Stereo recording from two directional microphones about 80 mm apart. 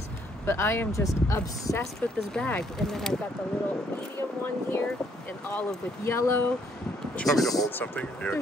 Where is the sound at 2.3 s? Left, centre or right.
Centre.